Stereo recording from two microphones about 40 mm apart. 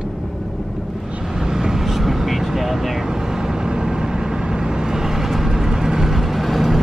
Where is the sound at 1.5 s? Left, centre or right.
Centre.